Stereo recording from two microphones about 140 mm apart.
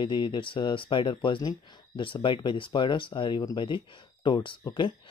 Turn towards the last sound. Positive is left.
turn(degrees=35)  # may be behind; listen again after turning